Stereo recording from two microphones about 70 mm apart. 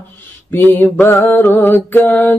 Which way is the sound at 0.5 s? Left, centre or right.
Left.